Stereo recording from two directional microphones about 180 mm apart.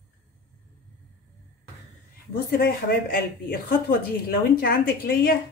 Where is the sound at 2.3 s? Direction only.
60° left (ahead or behind).